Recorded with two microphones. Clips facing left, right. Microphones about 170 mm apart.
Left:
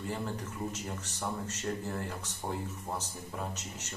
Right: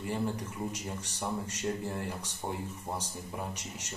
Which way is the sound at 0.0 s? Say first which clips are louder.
Right 3 dB; 15° right (ahead or behind).